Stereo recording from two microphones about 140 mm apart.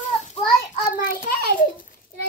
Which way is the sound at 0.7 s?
80° left.